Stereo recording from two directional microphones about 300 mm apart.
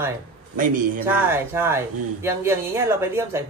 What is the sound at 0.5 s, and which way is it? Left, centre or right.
Speech, right.